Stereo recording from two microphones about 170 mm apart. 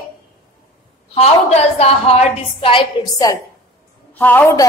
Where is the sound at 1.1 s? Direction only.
35° left (ahead or behind).